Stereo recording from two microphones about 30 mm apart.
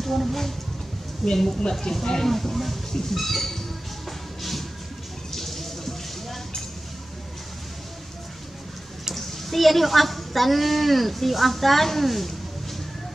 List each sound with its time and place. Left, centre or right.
0.0 s speech: centre
1.2 s speech: centre
2.2 s a child's voice: centre
2.9 s train: centre
4.4 s a sound: centre
9.1 s a child's voice: centre